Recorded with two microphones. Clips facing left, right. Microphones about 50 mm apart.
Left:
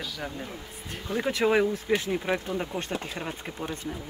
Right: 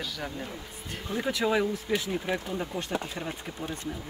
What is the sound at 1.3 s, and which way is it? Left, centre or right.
Speech, left.